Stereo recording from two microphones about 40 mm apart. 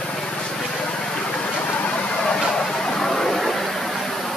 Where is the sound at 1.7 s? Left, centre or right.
Left.